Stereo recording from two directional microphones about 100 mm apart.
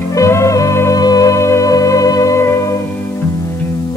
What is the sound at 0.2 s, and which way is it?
Music, 30° left (ahead or behind).